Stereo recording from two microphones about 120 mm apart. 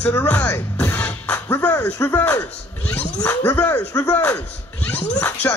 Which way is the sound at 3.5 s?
10° left (ahead or behind).